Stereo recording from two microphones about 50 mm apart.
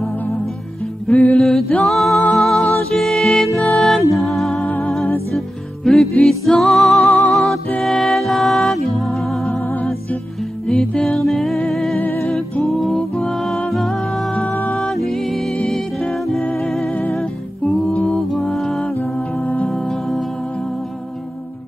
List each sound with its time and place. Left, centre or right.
1.0 s music: left
1.4 s a capella: centre
1.9 s music: centre
5.9 s music: centre
11.1 s music: centre
14.4 s music: left
14.8 s music: centre
18.9 s music: left
19.7 s music: centre